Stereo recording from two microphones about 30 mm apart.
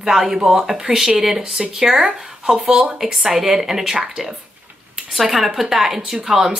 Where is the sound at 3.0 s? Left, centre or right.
Centre.